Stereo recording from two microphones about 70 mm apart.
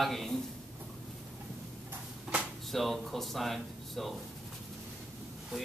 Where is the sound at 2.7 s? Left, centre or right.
Centre.